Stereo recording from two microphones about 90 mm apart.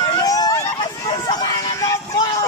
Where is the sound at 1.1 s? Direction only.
55° left (ahead or behind).